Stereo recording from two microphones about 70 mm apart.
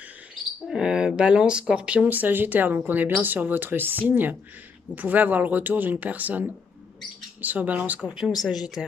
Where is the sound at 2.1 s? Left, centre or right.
Right.